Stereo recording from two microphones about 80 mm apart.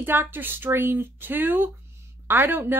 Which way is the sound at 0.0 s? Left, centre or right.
Right.